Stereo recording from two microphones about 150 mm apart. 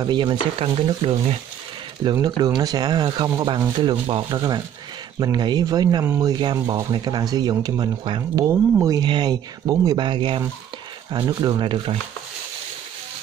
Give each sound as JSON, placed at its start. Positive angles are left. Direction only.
{"t": 0.0, "sound": "speech", "side_deg": -30}
{"t": 2.1, "sound": "speech", "side_deg": -25}